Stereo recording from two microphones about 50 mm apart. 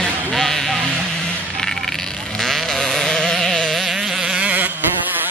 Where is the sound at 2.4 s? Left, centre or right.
Centre.